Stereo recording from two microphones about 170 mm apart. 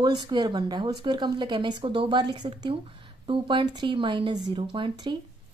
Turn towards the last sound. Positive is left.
turn(degrees=-25)  # may be behind; listen again after turning